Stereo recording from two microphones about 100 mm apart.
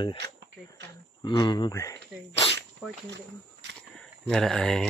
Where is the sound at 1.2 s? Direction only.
50° left (ahead or behind).